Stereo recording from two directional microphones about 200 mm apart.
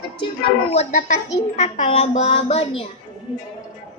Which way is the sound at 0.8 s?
40° left (ahead or behind).